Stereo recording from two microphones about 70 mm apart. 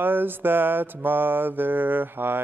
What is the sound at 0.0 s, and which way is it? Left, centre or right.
Mantra, right.